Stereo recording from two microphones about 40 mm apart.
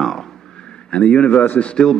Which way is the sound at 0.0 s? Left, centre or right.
Centre.